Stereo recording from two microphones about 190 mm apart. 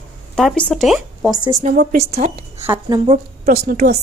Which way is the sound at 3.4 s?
50° right (ahead or behind).